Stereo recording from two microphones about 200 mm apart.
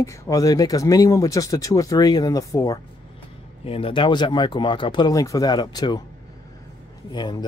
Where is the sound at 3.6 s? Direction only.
30° left (ahead or behind).